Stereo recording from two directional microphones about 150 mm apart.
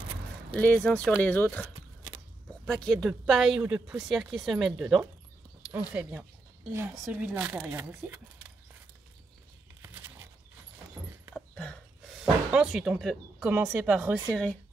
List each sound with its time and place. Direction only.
0.6 s speech: 10° left (ahead or behind)
2.6 s speech: 5° left (ahead or behind)
5.6 s keys jangling: 10° right (ahead or behind)
5.9 s speech: 10° right (ahead or behind)
9.8 s a sound: 15° right (ahead or behind)
11.3 s a sound: 5° left (ahead or behind)
12.4 s speech: 5° right (ahead or behind)
14.3 s speech: 10° left (ahead or behind)